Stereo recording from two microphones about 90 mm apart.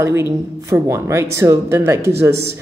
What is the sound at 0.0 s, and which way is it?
A woman's voice, 30° right (ahead or behind).